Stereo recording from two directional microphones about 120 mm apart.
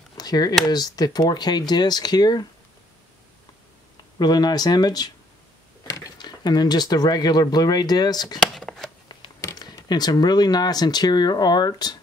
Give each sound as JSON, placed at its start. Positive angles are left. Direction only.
{"t": 0.2, "sound": "speech", "side_deg": 35}
{"t": 4.2, "sound": "speech", "side_deg": 35}
{"t": 8.4, "sound": "shuffling cards", "side_deg": 0}
{"t": 9.4, "sound": "speech", "side_deg": 30}